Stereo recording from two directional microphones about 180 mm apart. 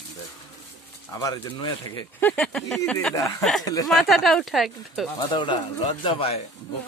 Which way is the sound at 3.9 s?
Centre (ahead or behind).